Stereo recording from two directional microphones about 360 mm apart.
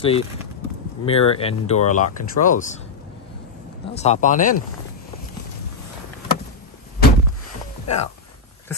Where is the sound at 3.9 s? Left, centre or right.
Centre.